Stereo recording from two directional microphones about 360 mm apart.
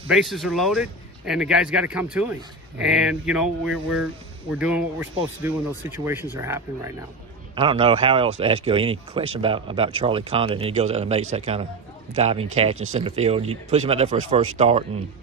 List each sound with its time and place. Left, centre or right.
0.1 s speech: centre